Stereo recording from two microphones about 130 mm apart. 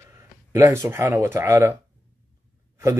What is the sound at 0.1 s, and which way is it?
Speech, 20° right (ahead or behind).